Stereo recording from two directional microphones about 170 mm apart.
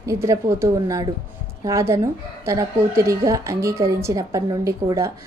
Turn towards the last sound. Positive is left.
turn(degrees=-20)  # may be behind; listen again after turning